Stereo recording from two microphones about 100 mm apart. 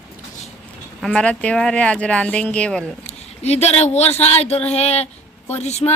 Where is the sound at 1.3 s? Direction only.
10° left (ahead or behind).